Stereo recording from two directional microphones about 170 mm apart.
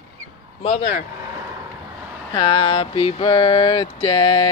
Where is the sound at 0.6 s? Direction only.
35° left (ahead or behind).